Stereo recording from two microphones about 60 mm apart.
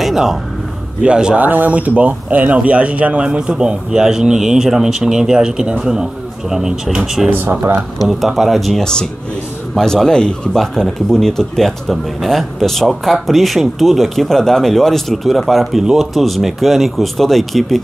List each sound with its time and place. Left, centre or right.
0.0 s a sound: centre
1.0 s speech: centre
1.4 s speech: right; by 17.7 s centre